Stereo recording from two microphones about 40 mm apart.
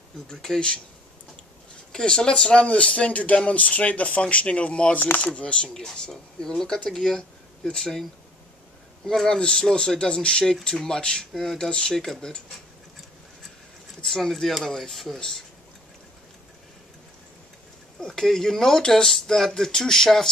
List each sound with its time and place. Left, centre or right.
0.3 s speech: centre
1.9 s speech: centre
5.7 s speech: centre
9.0 s speech: centre
14.0 s speech: centre
15.1 s speech: centre
18.0 s speech: centre